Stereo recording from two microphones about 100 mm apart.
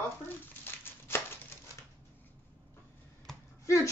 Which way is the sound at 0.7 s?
25° left (ahead or behind).